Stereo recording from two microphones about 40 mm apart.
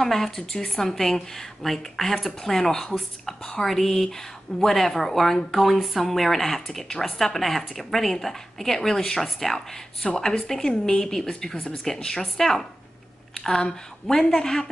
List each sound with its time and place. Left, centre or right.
0.0 s speech: centre
10.0 s speech: centre